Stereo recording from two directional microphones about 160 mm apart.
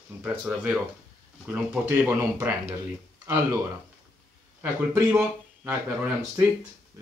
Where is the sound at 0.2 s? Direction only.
5° right (ahead or behind).